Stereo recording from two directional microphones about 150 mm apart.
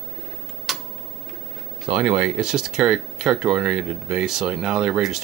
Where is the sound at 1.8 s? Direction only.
5° right (ahead or behind).